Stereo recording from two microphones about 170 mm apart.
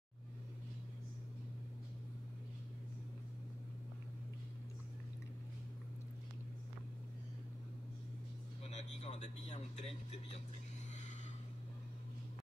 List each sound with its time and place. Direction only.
8.6 s a man's voice: 40° left (ahead or behind)